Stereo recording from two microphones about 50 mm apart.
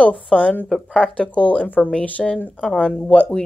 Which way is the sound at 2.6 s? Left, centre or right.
Centre.